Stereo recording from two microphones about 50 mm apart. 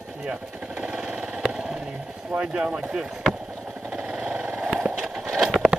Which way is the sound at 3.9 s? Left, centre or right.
Right.